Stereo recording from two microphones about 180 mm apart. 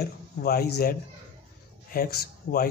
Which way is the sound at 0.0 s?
60° left (ahead or behind).